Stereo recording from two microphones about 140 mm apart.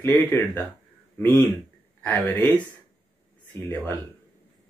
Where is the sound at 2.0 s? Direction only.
10° left (ahead or behind).